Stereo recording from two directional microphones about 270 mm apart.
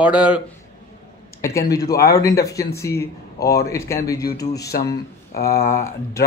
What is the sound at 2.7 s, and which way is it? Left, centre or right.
A man's voice, centre.